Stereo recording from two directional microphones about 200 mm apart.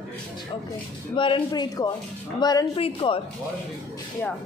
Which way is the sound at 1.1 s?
25° left (ahead or behind).